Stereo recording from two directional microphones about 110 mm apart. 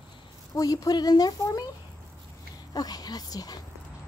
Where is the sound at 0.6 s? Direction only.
35° left (ahead or behind).